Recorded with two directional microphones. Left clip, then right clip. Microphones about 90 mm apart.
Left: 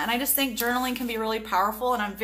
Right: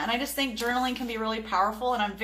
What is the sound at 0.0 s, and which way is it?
A woman's voice, 30° left (ahead or behind).